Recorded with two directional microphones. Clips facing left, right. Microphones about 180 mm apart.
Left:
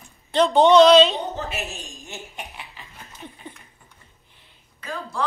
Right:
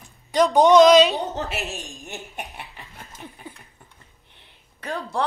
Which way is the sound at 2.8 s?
15° right (ahead or behind).